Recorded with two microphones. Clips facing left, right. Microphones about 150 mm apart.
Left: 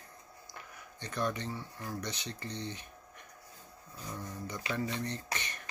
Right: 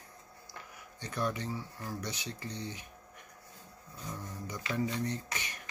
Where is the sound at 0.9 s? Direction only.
10° right (ahead or behind).